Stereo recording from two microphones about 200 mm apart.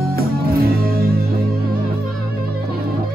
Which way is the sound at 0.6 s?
50° right (ahead or behind).